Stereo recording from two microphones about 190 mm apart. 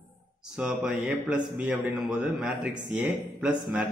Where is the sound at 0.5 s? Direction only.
5° right (ahead or behind).